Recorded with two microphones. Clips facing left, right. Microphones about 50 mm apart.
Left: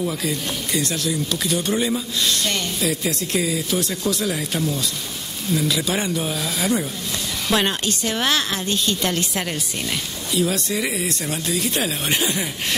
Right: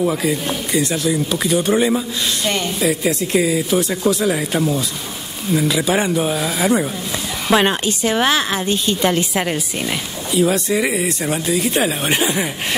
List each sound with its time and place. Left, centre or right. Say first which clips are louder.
0.2 s speech: right 5 dB; centre